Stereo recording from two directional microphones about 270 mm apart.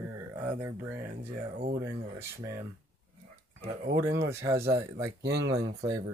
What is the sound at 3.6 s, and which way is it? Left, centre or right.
Speech, right.